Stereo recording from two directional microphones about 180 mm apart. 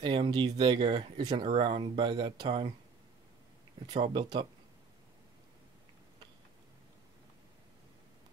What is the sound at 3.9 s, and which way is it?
Speech, 25° right (ahead or behind).